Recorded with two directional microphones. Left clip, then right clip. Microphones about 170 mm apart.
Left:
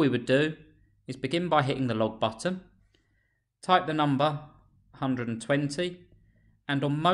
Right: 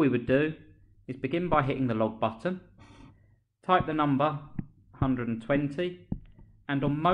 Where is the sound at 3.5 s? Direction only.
30° left (ahead or behind).